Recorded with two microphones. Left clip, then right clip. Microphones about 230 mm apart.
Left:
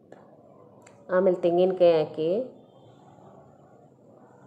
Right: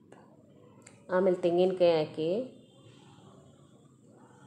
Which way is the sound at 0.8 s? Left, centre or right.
Centre.